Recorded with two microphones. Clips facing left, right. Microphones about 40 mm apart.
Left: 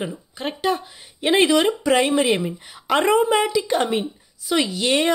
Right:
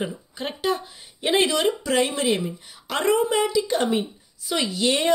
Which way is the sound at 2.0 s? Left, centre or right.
Centre.